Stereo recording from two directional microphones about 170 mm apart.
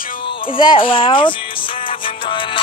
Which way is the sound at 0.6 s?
30° left (ahead or behind).